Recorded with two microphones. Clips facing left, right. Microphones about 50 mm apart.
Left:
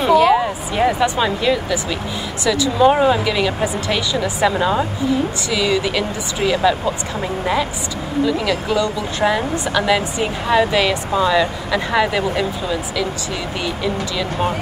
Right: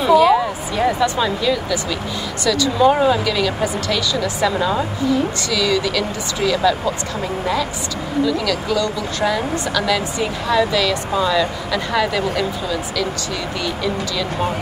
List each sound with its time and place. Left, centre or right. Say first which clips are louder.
0.0 s speech: even; centre
8.3 s speech: left 1 dB; left